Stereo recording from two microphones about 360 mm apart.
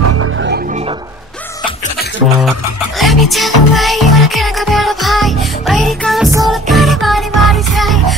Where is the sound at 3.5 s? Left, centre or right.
Left.